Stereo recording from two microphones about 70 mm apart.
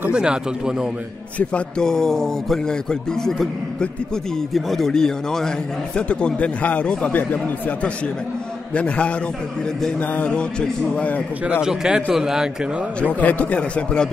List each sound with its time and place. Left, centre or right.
0.1 s a man's voice: centre
1.5 s a man's voice: centre
11.4 s a man's voice: centre
13.0 s a man's voice: left